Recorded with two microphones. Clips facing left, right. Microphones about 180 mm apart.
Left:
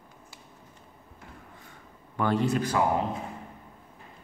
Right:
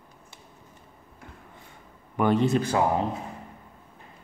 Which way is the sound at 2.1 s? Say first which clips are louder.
Right 4 dB; 20° right (ahead or behind).